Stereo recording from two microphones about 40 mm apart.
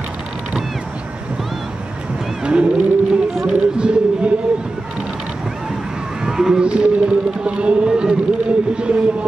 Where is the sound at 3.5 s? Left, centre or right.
Right.